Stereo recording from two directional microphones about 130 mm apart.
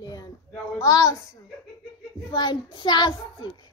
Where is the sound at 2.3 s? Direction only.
35° left (ahead or behind).